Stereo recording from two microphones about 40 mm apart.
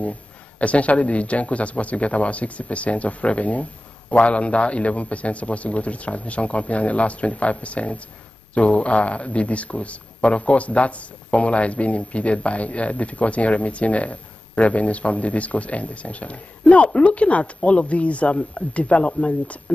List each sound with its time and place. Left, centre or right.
0.6 s a man's voice: left